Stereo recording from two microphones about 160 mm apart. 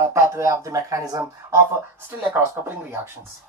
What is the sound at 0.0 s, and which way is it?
Speech, 15° right (ahead or behind).